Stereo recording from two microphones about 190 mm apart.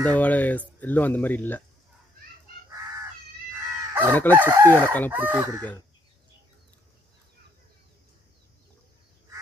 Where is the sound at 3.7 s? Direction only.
10° right (ahead or behind).